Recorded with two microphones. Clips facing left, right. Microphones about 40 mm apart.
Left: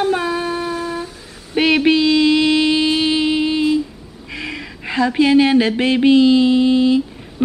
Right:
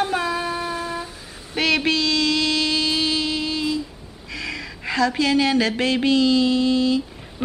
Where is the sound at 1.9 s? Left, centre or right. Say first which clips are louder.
Left 7 dB; left.